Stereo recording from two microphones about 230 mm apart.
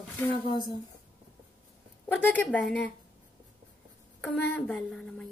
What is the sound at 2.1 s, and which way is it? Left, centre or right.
Speech, centre.